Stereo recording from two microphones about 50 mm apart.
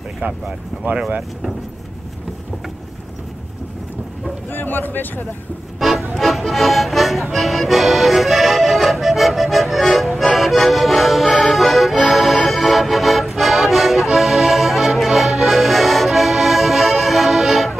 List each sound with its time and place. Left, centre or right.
0.2 s speech: right
4.5 s speech: left
5.8 s music: centre
6.1 s speech: centre
7.3 s accordion: centre
12.4 s music: centre
14.0 s accordion: centre